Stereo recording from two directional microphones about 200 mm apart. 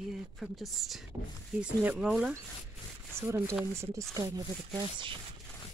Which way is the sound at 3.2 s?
15° right (ahead or behind).